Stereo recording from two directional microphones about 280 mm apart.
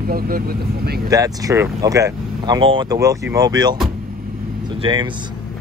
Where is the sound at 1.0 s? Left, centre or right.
Centre.